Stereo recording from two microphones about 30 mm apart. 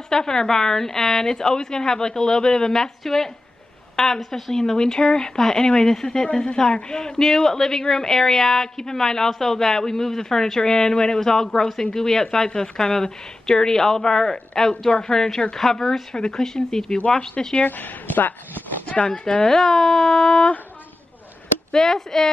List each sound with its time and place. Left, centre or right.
0.1 s a woman's voice: centre
2.7 s a woman's voice: centre
3.9 s a sound: centre
4.3 s a woman's voice: centre
6.4 s a woman's voice: left
7.2 s a woman's voice: centre
16.2 s a woman's voice: left
17.6 s speech: left
19.4 s a woman's voice: centre
21.7 s a woman's voice: centre